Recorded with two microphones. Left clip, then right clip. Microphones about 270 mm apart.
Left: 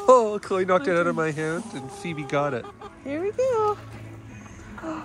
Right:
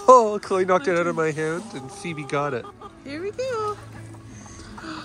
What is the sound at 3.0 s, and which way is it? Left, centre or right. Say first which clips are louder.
Speech: left 4 dB; centre.